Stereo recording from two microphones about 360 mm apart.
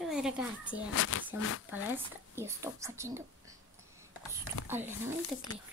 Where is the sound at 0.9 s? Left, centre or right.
Left.